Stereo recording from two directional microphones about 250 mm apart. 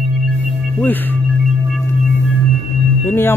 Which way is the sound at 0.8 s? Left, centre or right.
Centre.